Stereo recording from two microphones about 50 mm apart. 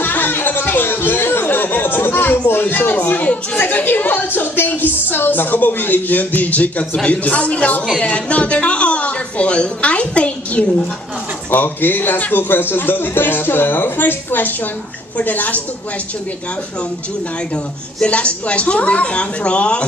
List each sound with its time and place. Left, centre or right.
0.0 s a woman's voice: left
8.0 s a sound: left
11.5 s a woman's voice: left
18.0 s a woman's voice: left